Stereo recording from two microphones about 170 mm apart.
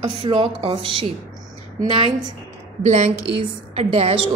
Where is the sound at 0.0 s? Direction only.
35° right (ahead or behind).